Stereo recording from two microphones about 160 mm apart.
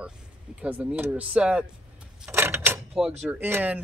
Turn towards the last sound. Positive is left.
turn(degrees=-10)  # may be behind; listen again after turning